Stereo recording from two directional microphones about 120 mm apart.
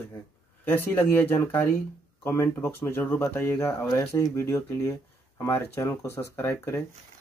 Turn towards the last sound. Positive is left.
turn(degrees=20)  # may be behind; listen again after turning